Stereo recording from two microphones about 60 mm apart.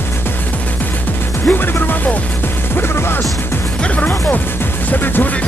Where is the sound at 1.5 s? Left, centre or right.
Left.